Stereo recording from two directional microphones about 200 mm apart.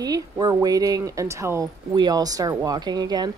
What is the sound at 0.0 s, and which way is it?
Speech, 20° right (ahead or behind).